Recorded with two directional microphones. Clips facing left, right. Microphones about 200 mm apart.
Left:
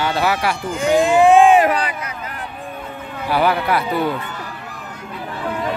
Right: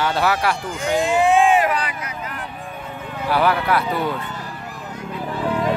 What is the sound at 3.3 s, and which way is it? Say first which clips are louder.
Speech: left 1 dB; 5° left (ahead or behind).